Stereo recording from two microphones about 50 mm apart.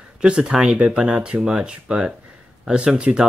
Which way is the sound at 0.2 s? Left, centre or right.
Centre.